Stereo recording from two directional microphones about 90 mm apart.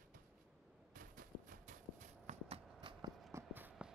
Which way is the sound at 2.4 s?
90° right.